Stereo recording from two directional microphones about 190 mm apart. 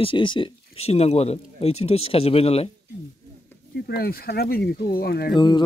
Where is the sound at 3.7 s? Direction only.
55° left (ahead or behind).